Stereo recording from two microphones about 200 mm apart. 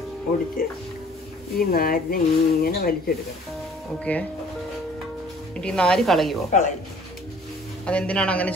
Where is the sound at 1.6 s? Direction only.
50° left (ahead or behind).